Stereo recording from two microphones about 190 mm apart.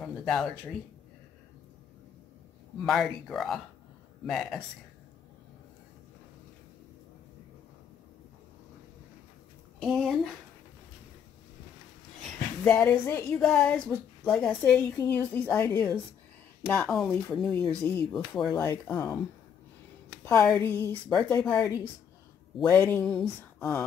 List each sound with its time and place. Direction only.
0.0 s speech: centre (ahead or behind)
2.8 s speech: centre (ahead or behind)
9.8 s speech: centre (ahead or behind)
12.2 s a woman's voice: 5° left (ahead or behind)
18.5 s a woman's voice: 15° left (ahead or behind)
18.9 s speech: 5° left (ahead or behind)
20.2 s a woman's voice: 10° left (ahead or behind)